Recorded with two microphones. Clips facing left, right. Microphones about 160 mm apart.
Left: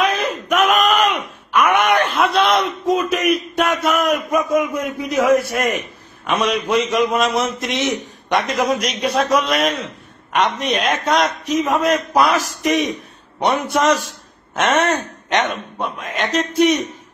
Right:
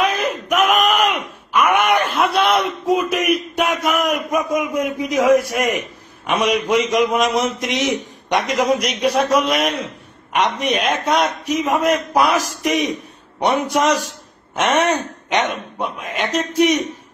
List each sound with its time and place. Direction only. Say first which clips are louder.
0.0 s wail: even; 10° right (ahead or behind)
7.2 s a man's voice: right 1 dB; 15° right (ahead or behind)
13.4 s a man's voice: even; 15° right (ahead or behind)